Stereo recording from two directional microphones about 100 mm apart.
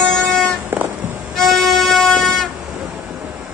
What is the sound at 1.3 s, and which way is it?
Violin, 5° left (ahead or behind).